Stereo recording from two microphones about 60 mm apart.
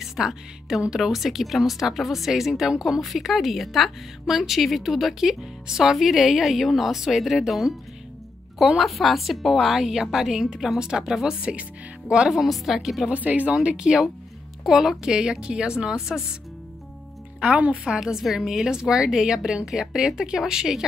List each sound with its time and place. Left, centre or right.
0.0 s a woman's voice: centre
13.1 s speech: right
13.6 s a woman's voice: centre
17.4 s speech: centre
17.8 s a woman's voice: centre